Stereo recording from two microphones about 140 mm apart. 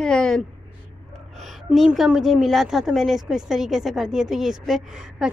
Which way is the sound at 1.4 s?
Centre (ahead or behind).